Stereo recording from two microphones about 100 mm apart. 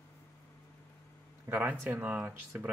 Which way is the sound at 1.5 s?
15° right (ahead or behind).